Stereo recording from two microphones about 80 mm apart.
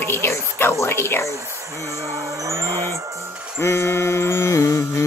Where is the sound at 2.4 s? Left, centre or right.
Right.